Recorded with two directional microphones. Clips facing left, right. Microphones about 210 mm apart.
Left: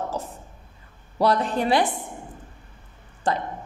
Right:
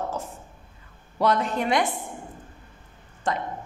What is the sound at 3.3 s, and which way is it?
Speech, 35° left (ahead or behind).